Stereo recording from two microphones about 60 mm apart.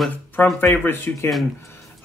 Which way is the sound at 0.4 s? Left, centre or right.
Left.